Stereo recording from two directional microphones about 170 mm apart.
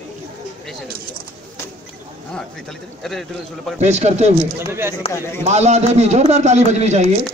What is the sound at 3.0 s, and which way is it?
Speech, centre (ahead or behind).